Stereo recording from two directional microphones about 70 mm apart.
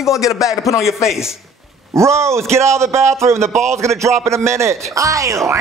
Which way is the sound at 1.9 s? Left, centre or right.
Right.